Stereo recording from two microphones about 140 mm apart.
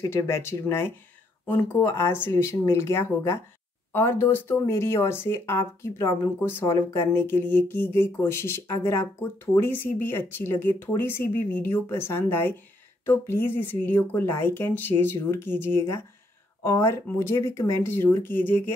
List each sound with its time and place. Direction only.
0.1 s speech: 20° left (ahead or behind)